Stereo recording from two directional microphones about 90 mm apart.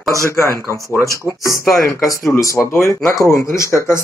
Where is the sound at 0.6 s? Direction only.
30° right (ahead or behind).